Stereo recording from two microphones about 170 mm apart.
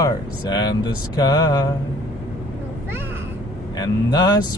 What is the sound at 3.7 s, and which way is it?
Speech, 25° left (ahead or behind).